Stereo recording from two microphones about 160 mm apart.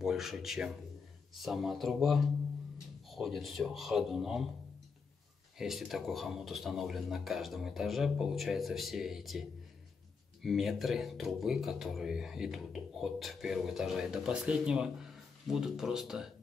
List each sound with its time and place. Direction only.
0.0 s speech: centre (ahead or behind)
5.6 s speech: centre (ahead or behind)